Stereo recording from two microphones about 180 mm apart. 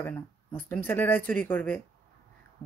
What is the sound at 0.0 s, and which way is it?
Speech, 10° left (ahead or behind).